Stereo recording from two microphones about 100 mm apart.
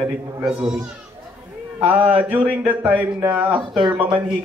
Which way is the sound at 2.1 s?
15° right (ahead or behind).